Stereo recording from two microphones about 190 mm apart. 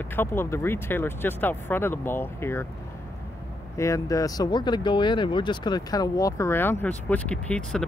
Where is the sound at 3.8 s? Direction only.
15° left (ahead or behind).